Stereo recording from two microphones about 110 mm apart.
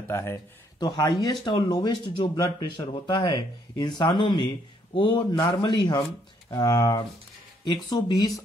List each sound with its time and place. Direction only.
0.1 s speech: 25° left (ahead or behind)
0.7 s speech: 40° left (ahead or behind)